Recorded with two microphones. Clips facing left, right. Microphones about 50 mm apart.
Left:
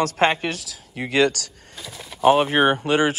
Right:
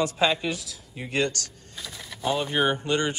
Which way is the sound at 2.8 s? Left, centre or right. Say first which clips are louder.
Left 6 dB; left.